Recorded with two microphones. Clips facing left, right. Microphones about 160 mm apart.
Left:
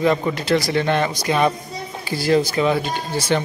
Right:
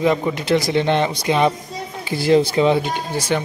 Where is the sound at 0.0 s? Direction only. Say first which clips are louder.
Even; 15° right (ahead or behind).